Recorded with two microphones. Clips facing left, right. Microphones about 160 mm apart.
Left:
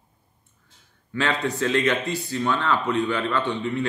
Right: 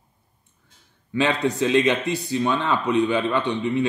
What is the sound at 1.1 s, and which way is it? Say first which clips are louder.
Speech: right 3 dB; 15° right (ahead or behind).